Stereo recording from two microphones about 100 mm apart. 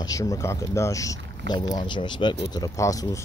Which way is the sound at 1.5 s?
45° left (ahead or behind).